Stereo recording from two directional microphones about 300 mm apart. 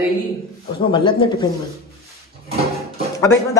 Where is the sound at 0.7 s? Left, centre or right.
Centre.